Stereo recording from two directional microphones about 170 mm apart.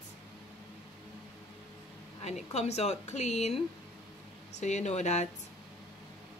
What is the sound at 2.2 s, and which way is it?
A woman's voice, 40° left (ahead or behind).